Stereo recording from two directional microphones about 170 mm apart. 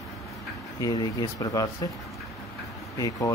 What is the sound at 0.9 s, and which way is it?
Speech, 25° left (ahead or behind).